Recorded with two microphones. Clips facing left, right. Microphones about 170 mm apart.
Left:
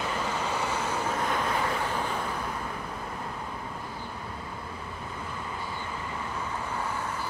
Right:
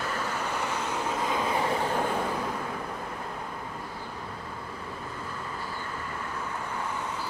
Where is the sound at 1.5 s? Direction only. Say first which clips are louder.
Right 2 dB; 25° right (ahead or behind).